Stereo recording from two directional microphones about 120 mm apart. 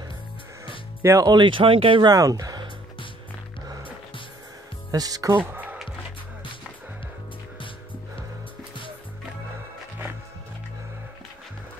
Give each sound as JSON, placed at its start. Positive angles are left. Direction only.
{"t": 1.0, "sound": "speech", "side_deg": -30}
{"t": 4.9, "sound": "speech", "side_deg": -30}
{"t": 5.4, "sound": "music", "side_deg": -15}